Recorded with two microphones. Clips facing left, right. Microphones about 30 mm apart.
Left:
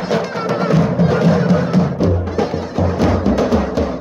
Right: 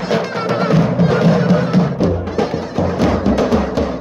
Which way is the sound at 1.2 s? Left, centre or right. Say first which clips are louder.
Right 1 dB; right.